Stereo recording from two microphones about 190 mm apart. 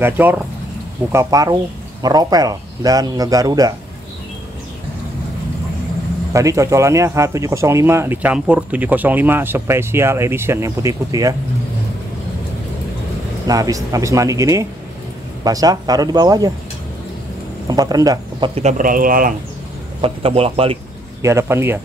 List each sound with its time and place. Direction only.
0.0 s speech: 10° right (ahead or behind)
6.3 s speech: 15° right (ahead or behind)
13.5 s speech: 20° right (ahead or behind)
17.6 s speech: 20° right (ahead or behind)
18.5 s speech: 35° right (ahead or behind)
20.0 s speech: 30° right (ahead or behind)
21.2 s speech: 15° right (ahead or behind)